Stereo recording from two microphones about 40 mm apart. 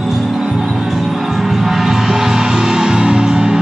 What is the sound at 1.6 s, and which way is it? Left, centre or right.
Music, centre.